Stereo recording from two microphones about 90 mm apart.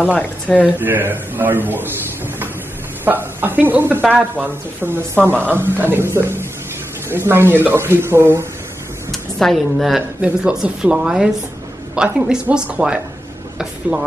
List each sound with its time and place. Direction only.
0.0 s speech: 20° left (ahead or behind)
0.7 s speech: 20° right (ahead or behind)
3.1 s speech: 20° right (ahead or behind)
5.3 s speech: 20° left (ahead or behind)
5.6 s speech: 25° right (ahead or behind)
9.4 s speech: centre (ahead or behind)
10.2 s speech: 10° right (ahead or behind)